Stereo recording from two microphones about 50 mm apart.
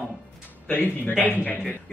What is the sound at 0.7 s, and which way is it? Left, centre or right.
Speech, left.